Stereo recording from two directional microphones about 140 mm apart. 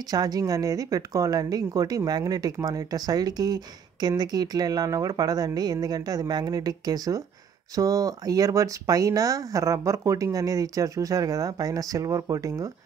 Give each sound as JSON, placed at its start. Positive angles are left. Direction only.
{"t": 0.1, "sound": "speech", "side_deg": -25}